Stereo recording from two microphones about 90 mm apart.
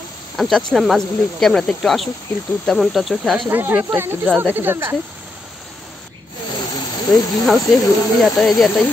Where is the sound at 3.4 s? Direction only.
20° right (ahead or behind).